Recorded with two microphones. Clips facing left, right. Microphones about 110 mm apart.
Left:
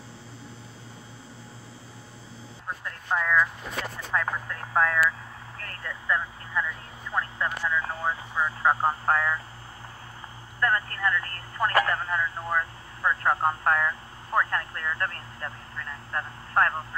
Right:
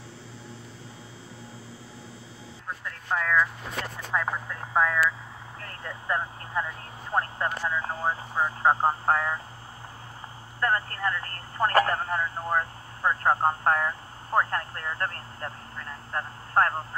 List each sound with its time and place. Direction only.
2.8 s speech: 5° left (ahead or behind)
4.1 s speech: 10° right (ahead or behind)
5.6 s vehicle: 20° right (ahead or behind)
6.0 s speech: 30° right (ahead or behind)
10.6 s speech: 35° right (ahead or behind)